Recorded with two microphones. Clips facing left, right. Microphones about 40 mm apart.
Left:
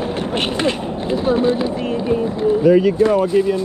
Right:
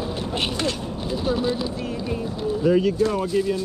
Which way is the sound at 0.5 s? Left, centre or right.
Left.